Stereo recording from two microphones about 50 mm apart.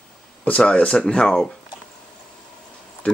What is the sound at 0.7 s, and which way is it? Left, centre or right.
Speech, left.